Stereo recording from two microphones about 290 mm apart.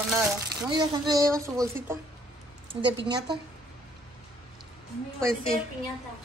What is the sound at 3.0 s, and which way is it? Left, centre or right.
Speech, centre.